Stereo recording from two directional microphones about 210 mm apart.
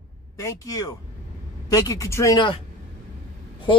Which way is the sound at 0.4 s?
15° left (ahead or behind).